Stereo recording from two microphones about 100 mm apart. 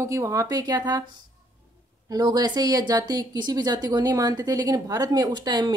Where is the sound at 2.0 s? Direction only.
40° right (ahead or behind).